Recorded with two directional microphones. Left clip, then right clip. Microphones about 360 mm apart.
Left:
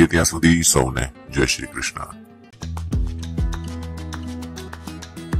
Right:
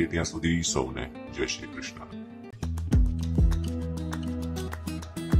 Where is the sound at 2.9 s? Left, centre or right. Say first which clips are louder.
Right 1 dB; centre.